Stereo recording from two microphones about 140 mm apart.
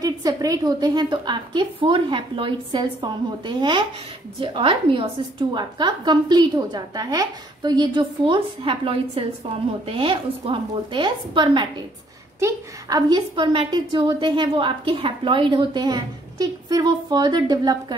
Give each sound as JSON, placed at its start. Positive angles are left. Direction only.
{"t": 0.0, "sound": "a woman's voice", "side_deg": -25}
{"t": 12.4, "sound": "a woman's voice", "side_deg": -25}